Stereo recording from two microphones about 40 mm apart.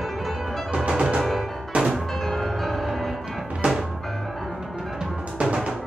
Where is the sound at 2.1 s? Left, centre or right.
Centre.